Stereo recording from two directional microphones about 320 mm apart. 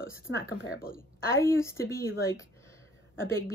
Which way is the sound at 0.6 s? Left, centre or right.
Left.